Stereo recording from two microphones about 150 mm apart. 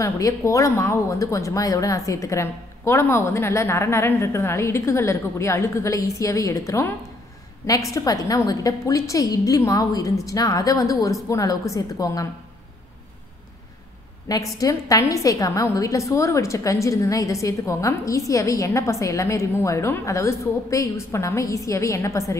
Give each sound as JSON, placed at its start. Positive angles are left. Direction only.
{"t": 0.0, "sound": "a woman's voice", "side_deg": 20}
{"t": 14.2, "sound": "a woman's voice", "side_deg": 20}